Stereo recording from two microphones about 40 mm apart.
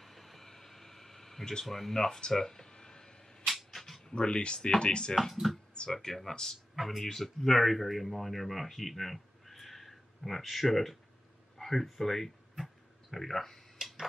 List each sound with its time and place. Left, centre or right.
0.0 s air conditioning: centre
1.7 s speech: centre
3.4 s cat: centre
4.1 s speech: left
5.1 s speech: centre
6.7 s a sound: centre
7.0 s speech: centre